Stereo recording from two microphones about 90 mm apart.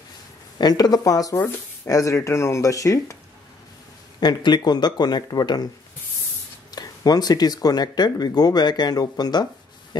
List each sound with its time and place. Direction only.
0.6 s speech: 50° left (ahead or behind)
4.2 s speech: 55° left (ahead or behind)
6.7 s speech: 45° left (ahead or behind)